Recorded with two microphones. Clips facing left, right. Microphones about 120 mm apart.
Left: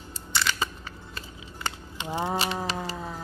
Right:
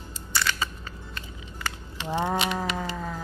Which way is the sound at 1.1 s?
25° left (ahead or behind).